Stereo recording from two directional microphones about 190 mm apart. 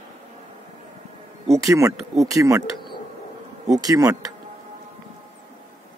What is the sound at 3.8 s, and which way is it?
Speech, 15° right (ahead or behind).